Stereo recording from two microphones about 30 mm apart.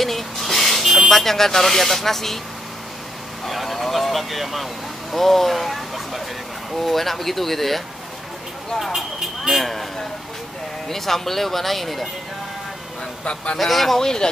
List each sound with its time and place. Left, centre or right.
0.0 s car alarm: centre
1.2 s speech: centre
3.4 s speech: centre
8.9 s speech: centre
9.6 s speech: centre
10.9 s speech: centre
13.2 s speech: left
13.6 s speech: centre
13.9 s speech: left